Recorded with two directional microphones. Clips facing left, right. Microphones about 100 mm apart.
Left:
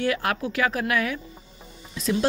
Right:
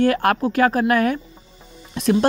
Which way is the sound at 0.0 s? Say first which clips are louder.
Right 8 dB; 50° right (ahead or behind).